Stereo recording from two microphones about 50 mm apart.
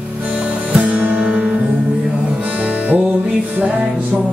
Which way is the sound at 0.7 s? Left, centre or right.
Right.